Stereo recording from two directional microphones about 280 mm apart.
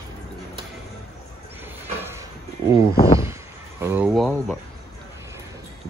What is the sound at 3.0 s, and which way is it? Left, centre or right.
Speech, centre.